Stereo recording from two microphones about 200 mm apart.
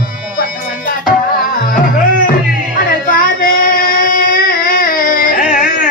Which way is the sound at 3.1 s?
45° left (ahead or behind).